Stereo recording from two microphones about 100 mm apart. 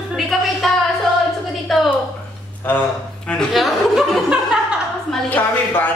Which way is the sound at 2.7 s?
20° left (ahead or behind).